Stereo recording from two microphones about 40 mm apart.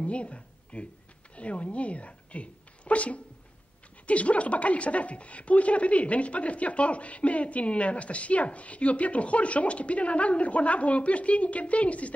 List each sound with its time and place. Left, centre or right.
0.0 s a woman's voice: left